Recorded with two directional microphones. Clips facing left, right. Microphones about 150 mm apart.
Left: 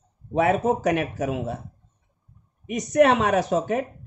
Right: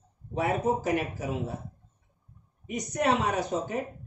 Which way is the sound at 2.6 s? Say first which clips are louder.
Left 9 dB; 90° left.